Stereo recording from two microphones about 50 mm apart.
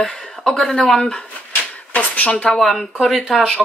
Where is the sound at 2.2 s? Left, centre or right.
Centre.